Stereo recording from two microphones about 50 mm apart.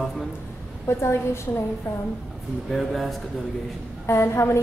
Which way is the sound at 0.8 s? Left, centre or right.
Left.